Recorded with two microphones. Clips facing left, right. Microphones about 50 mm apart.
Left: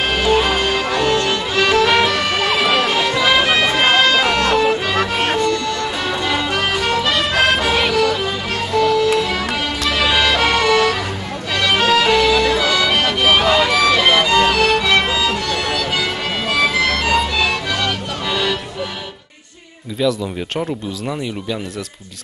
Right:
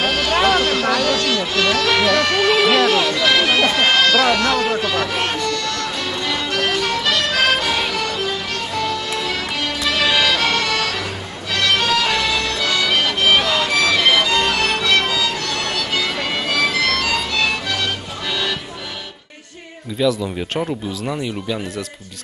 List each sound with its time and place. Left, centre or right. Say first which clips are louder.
0.0 s music: left 1 dB; centre
20.0 s speech: even; centre